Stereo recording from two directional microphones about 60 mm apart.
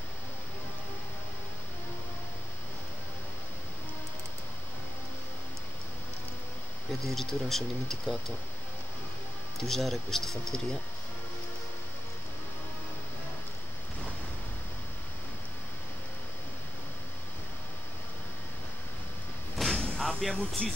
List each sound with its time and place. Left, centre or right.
7.1 s speech: centre
9.7 s speech: centre
19.7 s a sound: centre
20.0 s speech: centre